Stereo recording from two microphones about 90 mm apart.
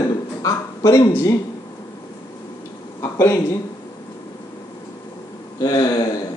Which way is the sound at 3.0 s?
30° left (ahead or behind).